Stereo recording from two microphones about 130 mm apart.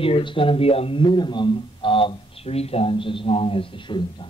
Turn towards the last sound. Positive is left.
turn(degrees=40)  # may be behind; listen again after turning